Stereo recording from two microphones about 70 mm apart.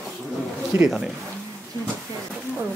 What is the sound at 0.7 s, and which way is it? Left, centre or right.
Speech, right.